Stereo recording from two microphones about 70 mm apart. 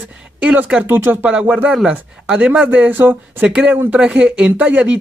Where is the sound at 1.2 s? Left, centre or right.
Centre.